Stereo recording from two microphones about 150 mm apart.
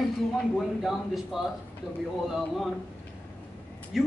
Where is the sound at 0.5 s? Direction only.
Centre (ahead or behind).